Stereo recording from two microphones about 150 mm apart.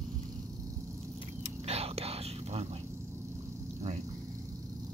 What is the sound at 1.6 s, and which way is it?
Whispering, 40° right (ahead or behind).